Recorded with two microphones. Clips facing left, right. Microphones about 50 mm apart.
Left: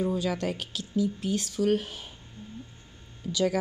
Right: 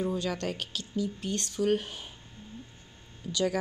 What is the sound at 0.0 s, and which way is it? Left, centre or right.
Speech, centre.